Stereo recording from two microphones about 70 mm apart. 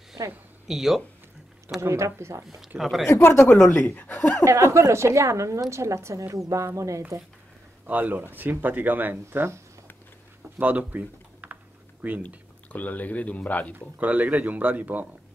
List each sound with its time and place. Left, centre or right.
0.2 s speech: right
0.7 s speech: centre
1.8 s speech: right
2.8 s speech: centre
3.1 s speech: left
4.5 s a woman's voice: right
7.8 s speech: right
10.6 s speech: right
12.7 s speech: left
13.7 s speech: right